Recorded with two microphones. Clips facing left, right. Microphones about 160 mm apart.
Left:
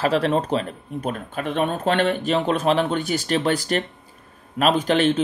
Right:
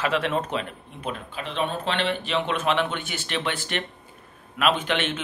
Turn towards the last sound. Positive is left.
turn(degrees=35)  # may be behind; listen again after turning